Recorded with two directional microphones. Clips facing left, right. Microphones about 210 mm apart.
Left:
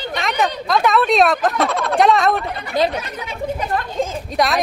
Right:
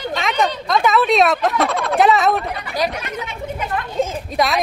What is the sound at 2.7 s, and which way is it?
Speech, 30° left (ahead or behind).